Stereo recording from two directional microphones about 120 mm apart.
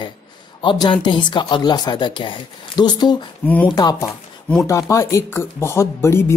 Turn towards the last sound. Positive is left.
turn(degrees=20)  # may be behind; listen again after turning